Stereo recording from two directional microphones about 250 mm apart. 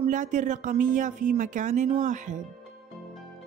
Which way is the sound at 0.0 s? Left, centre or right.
Right.